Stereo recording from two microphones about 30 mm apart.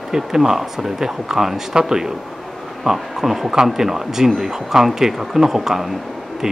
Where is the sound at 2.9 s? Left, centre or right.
Centre.